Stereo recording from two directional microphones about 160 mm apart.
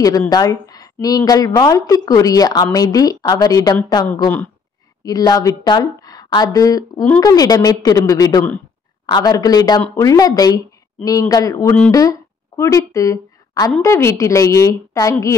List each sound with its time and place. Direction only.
0.3 s a woman's voice: 25° left (ahead or behind)
5.0 s a woman's voice: 25° left (ahead or behind)